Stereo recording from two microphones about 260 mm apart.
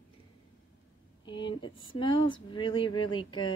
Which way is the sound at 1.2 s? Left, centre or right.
Centre.